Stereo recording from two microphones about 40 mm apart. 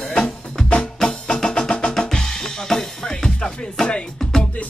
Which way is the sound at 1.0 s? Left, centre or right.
Left.